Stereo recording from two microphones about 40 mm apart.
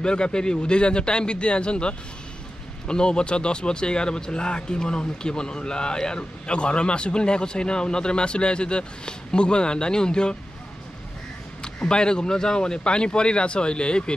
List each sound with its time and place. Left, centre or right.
0.0 s speech: left
11.6 s speech: left